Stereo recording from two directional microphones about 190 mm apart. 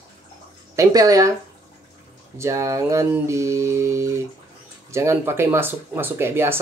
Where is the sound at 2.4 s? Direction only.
15° right (ahead or behind).